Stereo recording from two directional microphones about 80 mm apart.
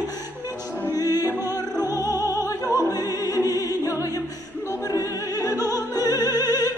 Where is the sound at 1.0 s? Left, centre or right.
Right.